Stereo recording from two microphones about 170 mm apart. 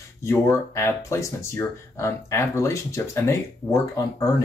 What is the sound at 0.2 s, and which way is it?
Speech, 15° left (ahead or behind).